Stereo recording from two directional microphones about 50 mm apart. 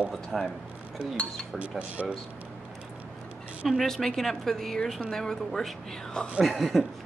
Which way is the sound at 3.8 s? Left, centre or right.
Centre.